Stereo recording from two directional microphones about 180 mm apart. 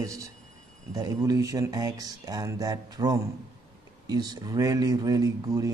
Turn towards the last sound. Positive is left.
turn(degrees=-20)  # may be behind; listen again after turning